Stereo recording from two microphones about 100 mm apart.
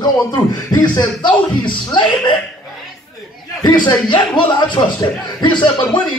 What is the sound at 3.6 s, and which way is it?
A man's voice, 50° left (ahead or behind).